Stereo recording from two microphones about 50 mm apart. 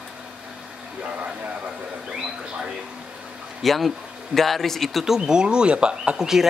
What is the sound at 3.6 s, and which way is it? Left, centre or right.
Speech, centre.